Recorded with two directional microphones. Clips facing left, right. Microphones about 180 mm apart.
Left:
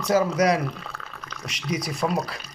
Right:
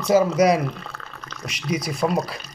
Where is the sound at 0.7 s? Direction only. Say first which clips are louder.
Right 2 dB; 5° left (ahead or behind).